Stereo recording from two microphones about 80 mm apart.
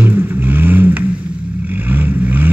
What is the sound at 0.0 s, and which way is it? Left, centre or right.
Vehicle, right.